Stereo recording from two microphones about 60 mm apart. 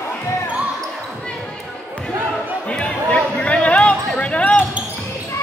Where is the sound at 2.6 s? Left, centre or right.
Centre.